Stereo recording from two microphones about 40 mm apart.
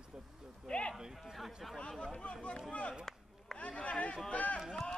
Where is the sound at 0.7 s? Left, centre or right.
Left.